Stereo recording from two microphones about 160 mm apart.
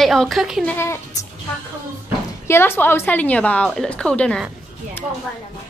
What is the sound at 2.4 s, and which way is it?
A woman's voice, 15° left (ahead or behind).